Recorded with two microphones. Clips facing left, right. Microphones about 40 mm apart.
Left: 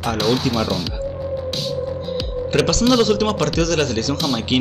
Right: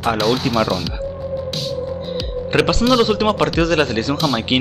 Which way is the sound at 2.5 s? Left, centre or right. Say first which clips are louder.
Right 1 dB; right.